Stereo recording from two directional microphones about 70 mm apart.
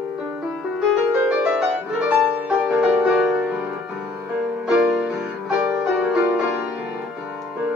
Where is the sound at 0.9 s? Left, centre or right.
Centre.